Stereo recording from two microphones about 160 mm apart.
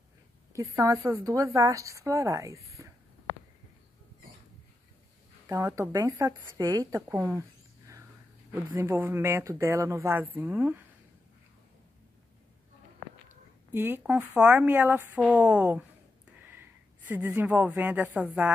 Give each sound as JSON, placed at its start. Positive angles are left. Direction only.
{"t": 0.5, "sound": "speech", "side_deg": -20}
{"t": 5.5, "sound": "speech", "side_deg": -20}
{"t": 7.0, "sound": "mouse", "side_deg": -15}
{"t": 8.7, "sound": "speech", "side_deg": -15}
{"t": 13.7, "sound": "a woman's voice", "side_deg": -15}